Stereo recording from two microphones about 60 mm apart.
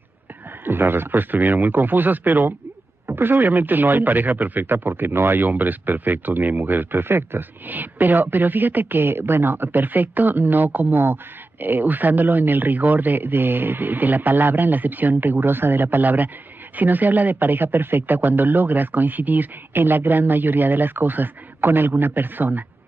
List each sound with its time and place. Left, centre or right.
0.7 s speech: right